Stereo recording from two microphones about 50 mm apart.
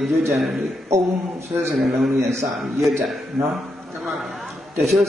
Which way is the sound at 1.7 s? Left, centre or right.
Centre.